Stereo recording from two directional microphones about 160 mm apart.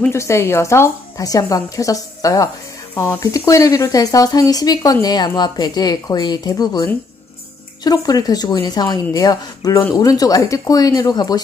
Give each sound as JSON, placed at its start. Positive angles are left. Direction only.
{"t": 0.0, "sound": "speech", "side_deg": 15}